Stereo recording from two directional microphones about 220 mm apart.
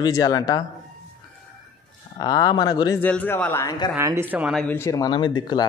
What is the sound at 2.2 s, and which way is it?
A man's voice, 15° left (ahead or behind).